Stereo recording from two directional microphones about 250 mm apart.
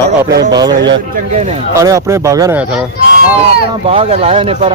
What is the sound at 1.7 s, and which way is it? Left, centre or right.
Speech, centre.